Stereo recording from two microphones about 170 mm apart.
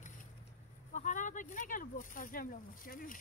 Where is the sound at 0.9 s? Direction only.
50° left (ahead or behind).